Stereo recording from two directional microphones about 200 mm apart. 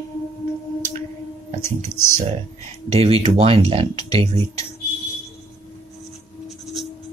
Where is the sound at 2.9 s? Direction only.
30° right (ahead or behind).